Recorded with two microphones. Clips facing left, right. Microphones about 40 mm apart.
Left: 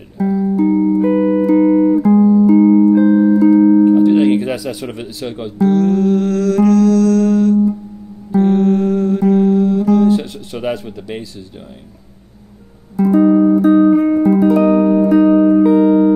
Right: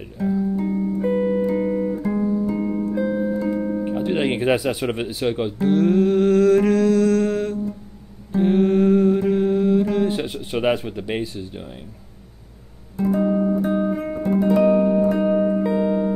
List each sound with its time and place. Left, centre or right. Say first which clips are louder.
0.7 s music: left 10 dB; centre
1.1 s music: left 7 dB; left
1.5 s music: left 11 dB; left
2.1 s music: left 13 dB; centre
3.8 s music: left 12 dB; centre
12.9 s music: left 8 dB; left
13.2 s music: left 12 dB; left
14.4 s music: left 1 dB; left
14.7 s music: left 6 dB; left